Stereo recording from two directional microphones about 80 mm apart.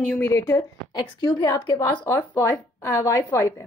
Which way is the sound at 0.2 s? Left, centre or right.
Left.